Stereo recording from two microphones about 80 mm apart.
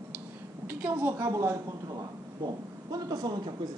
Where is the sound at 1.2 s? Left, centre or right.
Right.